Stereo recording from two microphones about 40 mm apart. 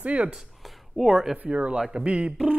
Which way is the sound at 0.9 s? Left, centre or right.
Centre.